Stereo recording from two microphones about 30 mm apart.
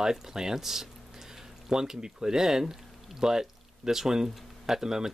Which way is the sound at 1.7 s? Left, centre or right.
Right.